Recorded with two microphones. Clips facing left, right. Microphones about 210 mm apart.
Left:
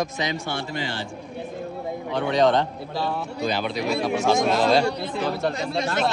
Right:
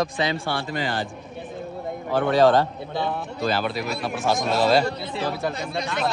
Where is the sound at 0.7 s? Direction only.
50° right (ahead or behind).